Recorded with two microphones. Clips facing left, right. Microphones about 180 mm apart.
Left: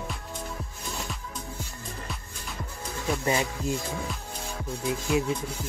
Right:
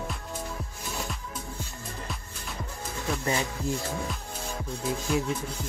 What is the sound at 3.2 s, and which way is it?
Speech, 20° left (ahead or behind).